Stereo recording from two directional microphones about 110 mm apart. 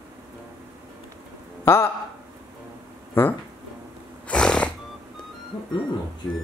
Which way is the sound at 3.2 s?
20° left (ahead or behind).